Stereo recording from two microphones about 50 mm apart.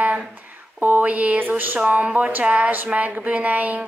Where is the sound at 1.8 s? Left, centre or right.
Right.